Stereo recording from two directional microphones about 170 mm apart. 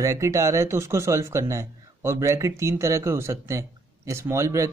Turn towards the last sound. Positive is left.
turn(degrees=-15)  # may be behind; listen again after turning